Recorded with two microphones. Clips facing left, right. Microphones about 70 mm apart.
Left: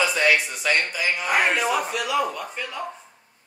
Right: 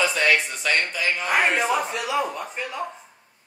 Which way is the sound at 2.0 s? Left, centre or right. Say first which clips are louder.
Left 1 dB; right.